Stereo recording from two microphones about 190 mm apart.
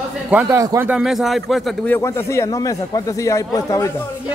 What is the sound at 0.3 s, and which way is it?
A man's voice, 10° right (ahead or behind).